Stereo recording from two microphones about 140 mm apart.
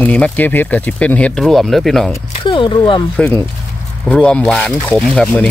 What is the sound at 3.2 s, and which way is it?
Speech, 10° left (ahead or behind).